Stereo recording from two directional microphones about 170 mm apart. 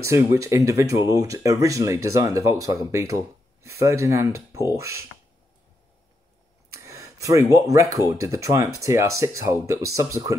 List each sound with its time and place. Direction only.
0.0 s speech: 15° right (ahead or behind)
6.7 s a sound: 15° right (ahead or behind)
8.1 s speech: 20° right (ahead or behind)